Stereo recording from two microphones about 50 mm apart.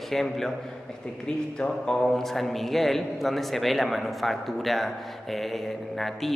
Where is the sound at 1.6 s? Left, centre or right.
Centre.